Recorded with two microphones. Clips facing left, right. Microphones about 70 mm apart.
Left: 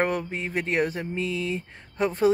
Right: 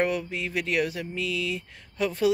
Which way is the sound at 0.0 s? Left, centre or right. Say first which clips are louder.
Left 1 dB; left.